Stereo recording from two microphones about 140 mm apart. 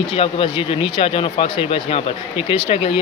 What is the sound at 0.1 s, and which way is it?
Speech, 40° left (ahead or behind).